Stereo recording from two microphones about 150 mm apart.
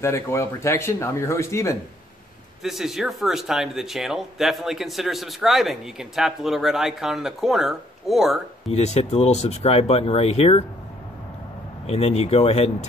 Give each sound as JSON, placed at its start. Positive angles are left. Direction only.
{"t": 0.0, "sound": "speech", "side_deg": 20}
{"t": 2.6, "sound": "speech", "side_deg": 0}
{"t": 8.7, "sound": "speech", "side_deg": 45}
{"t": 11.8, "sound": "speech", "side_deg": 40}